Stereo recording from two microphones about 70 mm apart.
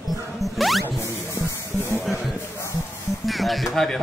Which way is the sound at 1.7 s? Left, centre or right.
Left.